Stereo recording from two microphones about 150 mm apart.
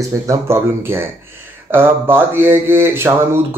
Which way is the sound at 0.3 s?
15° right (ahead or behind).